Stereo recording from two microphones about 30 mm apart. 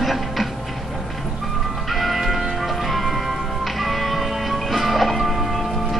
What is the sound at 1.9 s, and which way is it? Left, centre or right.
Church bell, centre.